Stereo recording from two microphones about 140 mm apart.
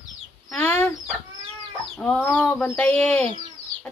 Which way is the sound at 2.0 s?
5° left (ahead or behind).